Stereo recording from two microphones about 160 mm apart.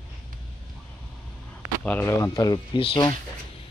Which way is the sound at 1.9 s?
15° left (ahead or behind).